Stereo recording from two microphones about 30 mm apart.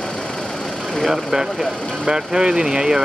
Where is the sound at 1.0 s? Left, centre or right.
Centre.